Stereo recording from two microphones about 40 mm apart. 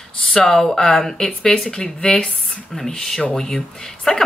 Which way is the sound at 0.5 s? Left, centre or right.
Centre.